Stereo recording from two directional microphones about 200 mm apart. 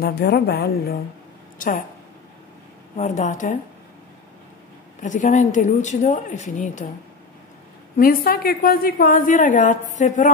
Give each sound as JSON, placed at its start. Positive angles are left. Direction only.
{"t": 0.0, "sound": "a woman's voice", "side_deg": 55}
{"t": 3.0, "sound": "a woman's voice", "side_deg": 40}
{"t": 5.0, "sound": "a woman's voice", "side_deg": 40}
{"t": 8.0, "sound": "a woman's voice", "side_deg": 45}